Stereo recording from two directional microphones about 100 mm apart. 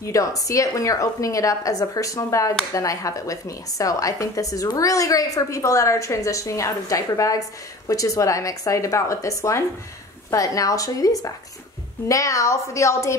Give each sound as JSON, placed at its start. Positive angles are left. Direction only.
{"t": 0.0, "sound": "speech", "side_deg": 35}